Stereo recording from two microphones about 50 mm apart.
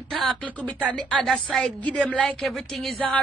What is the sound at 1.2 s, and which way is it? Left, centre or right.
Speech, centre.